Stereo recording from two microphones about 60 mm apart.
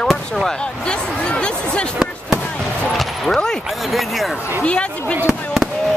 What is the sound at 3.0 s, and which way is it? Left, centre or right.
Speech, centre.